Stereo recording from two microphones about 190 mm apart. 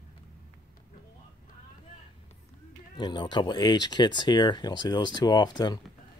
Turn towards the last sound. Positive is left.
turn(degrees=20)  # may be behind; listen again after turning